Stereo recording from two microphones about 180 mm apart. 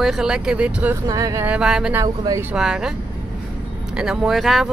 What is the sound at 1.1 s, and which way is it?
Speech, 20° right (ahead or behind).